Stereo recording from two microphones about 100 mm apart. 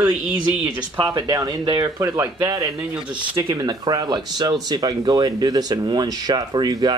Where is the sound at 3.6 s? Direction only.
40° right (ahead or behind).